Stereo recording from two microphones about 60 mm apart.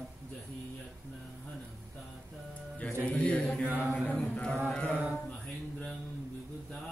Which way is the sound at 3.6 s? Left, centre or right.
Right.